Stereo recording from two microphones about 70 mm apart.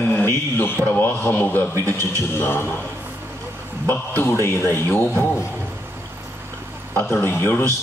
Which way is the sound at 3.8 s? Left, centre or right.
Left.